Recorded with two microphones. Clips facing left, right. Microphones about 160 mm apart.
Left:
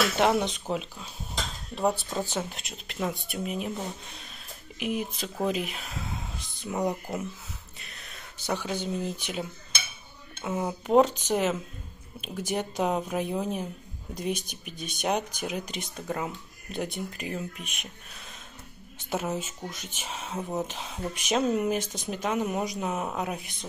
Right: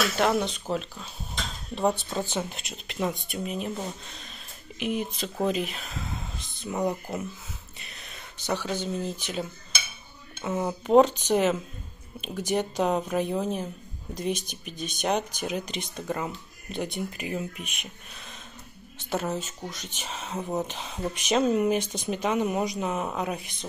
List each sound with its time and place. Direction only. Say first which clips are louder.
0.2 s speech: even; 15° left (ahead or behind)
1.8 s speech: right 1 dB; 5° left (ahead or behind)
8.5 s speech: right 1 dB; 10° left (ahead or behind); by 17.7 s 5° right (ahead or behind)
19.0 s speech: right 1 dB; 5° left (ahead or behind)